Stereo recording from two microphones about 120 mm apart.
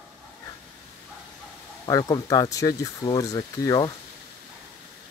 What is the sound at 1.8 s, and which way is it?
Speech, 30° left (ahead or behind).